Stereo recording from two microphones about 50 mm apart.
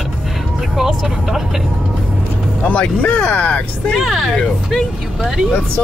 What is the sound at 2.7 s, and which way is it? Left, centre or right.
Speech, left.